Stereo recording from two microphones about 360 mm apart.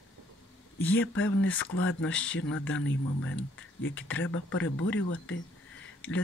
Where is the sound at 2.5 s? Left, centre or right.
Left.